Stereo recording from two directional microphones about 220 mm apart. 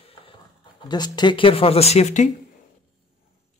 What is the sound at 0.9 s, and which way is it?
Speech, 20° left (ahead or behind).